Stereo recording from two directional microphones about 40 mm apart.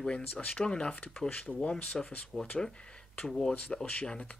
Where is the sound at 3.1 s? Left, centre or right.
Centre.